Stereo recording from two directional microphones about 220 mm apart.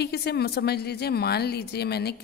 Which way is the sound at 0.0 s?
50° left (ahead or behind).